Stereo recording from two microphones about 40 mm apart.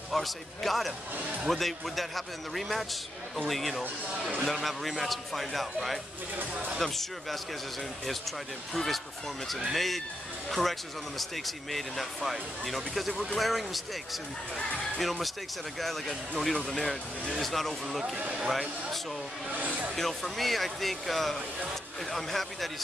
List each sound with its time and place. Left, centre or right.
0.1 s speech: centre
16.5 s speech: left
17.4 s speech: centre
17.8 s speech: centre
18.5 s speech: centre
19.6 s speech: right
20.0 s speech: centre